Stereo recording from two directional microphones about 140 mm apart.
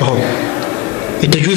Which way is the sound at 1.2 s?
45° right (ahead or behind).